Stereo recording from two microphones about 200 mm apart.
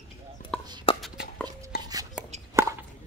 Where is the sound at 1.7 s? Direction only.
50° left (ahead or behind).